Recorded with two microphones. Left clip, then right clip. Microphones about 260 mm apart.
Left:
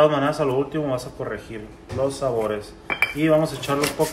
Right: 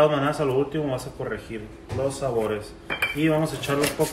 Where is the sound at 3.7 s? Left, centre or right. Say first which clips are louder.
Even; centre.